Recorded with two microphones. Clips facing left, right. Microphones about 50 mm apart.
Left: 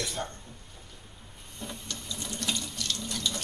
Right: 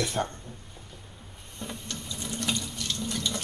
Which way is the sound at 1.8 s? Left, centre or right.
Centre.